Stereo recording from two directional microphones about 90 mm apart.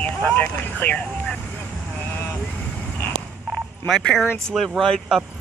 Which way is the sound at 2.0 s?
15° left (ahead or behind).